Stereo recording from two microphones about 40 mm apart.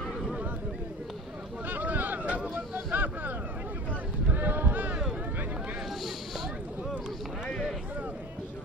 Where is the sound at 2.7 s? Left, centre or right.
Right.